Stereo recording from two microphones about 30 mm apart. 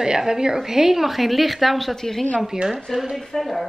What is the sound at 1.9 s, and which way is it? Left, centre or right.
Speech, centre.